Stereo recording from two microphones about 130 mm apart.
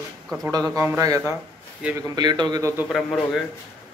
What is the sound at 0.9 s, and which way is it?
Speech, 25° right (ahead or behind).